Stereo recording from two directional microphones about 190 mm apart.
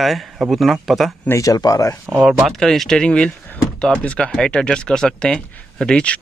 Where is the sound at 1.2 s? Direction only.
15° left (ahead or behind).